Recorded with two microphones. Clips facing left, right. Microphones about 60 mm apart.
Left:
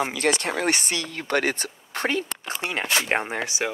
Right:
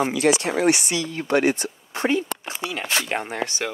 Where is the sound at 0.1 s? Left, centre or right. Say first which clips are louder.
Right 4 dB; left.